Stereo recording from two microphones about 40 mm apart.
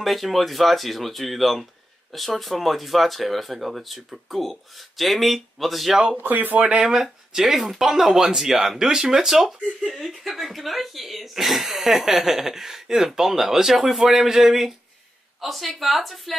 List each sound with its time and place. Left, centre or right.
0.0 s speech: centre
6.1 s speech: right
6.8 s speech: centre
15.4 s speech: centre